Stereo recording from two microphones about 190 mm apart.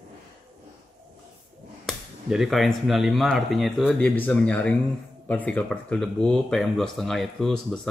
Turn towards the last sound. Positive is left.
turn(degrees=5)  # may be behind; listen again after turning